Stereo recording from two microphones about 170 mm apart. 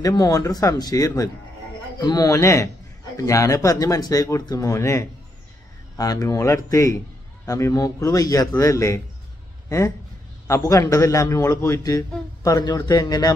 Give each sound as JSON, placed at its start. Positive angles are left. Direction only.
{"t": 0.0, "sound": "a man's voice", "side_deg": 20}